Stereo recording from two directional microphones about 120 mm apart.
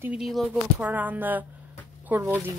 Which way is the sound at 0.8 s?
15° right (ahead or behind).